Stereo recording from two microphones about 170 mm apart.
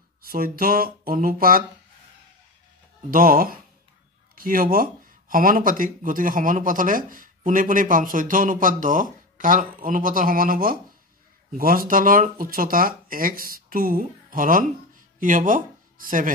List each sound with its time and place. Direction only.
0.2 s speech: 60° right (ahead or behind)
3.1 s speech: 55° right (ahead or behind)